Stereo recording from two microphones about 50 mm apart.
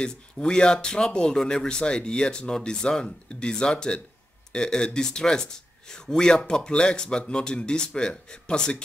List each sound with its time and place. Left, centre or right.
0.0 s speech: centre